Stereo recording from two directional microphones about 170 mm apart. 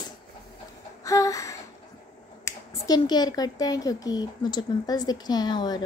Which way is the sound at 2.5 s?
25° left (ahead or behind).